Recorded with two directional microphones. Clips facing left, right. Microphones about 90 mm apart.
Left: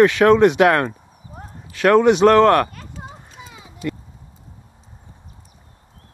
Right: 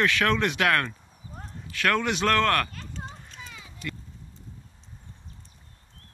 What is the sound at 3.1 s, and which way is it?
Clip-clop, 15° left (ahead or behind).